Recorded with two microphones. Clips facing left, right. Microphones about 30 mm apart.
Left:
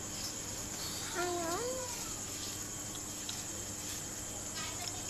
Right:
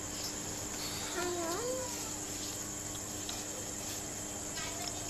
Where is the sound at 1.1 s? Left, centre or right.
Centre.